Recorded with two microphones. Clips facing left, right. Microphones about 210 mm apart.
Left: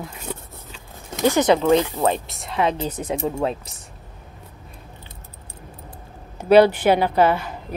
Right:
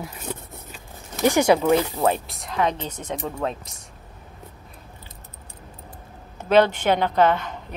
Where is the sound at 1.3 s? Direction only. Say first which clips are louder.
Left 1 dB; 10° right (ahead or behind).